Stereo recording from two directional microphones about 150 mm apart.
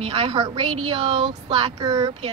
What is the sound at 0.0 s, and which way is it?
Speech, 40° right (ahead or behind).